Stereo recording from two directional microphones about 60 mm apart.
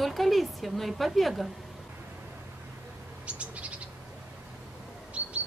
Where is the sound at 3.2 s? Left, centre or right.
Right.